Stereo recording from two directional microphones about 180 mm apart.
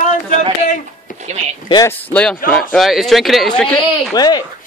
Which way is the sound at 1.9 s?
10° left (ahead or behind).